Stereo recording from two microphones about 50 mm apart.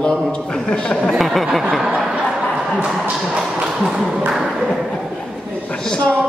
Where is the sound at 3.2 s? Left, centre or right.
Centre.